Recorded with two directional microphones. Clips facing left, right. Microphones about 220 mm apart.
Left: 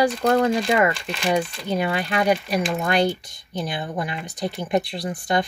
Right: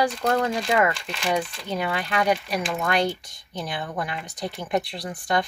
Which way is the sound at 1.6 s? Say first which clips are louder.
Left 4 dB; 10° left (ahead or behind).